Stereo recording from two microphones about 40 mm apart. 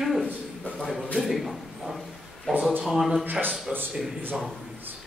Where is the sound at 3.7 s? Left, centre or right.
Right.